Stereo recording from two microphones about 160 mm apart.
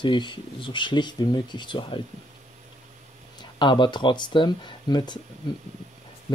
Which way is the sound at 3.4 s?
30° left (ahead or behind).